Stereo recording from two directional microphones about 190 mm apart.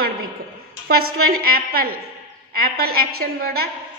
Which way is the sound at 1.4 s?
50° right (ahead or behind).